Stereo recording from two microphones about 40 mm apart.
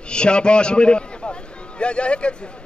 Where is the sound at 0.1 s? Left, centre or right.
Left.